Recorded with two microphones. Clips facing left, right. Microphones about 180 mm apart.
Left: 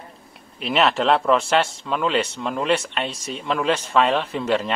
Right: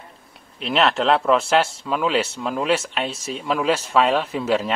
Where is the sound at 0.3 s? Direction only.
Centre (ahead or behind).